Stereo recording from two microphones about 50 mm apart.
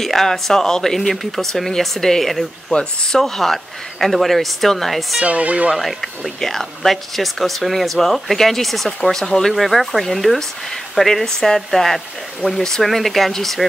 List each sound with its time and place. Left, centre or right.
0.0 s speech: centre
5.2 s speech: right
5.7 s speech: centre